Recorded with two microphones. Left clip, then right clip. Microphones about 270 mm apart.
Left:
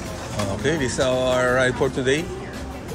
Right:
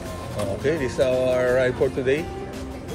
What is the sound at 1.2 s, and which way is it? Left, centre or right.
Speech, centre.